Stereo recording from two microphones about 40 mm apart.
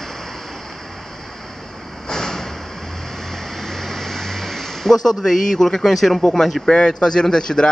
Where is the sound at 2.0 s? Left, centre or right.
Centre.